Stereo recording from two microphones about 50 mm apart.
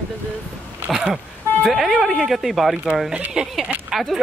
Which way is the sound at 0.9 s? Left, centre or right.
Centre.